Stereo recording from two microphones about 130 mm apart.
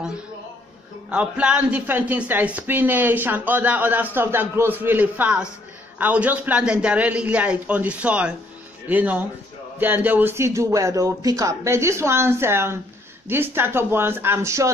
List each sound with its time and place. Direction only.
1.1 s speech: 10° right (ahead or behind)